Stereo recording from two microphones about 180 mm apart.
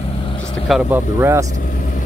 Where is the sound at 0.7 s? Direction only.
10° right (ahead or behind).